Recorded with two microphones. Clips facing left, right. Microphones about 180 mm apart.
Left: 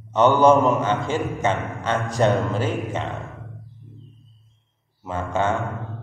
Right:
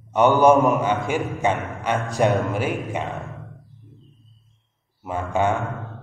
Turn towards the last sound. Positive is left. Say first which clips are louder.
# right 1 dB
turn(degrees=-15)  # may be behind; listen again after turning